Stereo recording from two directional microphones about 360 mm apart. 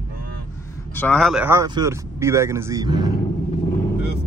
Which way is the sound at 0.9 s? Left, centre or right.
Centre.